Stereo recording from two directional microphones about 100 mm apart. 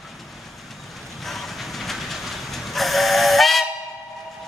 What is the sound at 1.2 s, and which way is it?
Vehicle, centre (ahead or behind).